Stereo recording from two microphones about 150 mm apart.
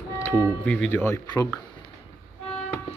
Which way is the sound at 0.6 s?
5° left (ahead or behind).